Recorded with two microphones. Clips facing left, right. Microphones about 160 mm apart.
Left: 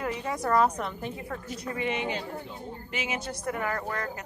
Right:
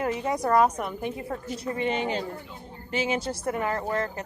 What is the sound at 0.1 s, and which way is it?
A woman's voice, 20° right (ahead or behind).